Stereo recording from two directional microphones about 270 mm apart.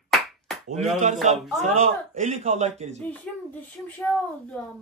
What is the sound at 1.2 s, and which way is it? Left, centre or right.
A man's voice, right.